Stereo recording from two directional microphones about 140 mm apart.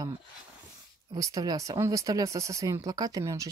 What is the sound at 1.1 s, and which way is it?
Speech, 25° right (ahead or behind).